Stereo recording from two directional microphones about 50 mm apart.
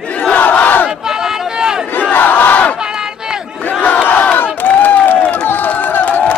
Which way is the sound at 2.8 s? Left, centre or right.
Centre.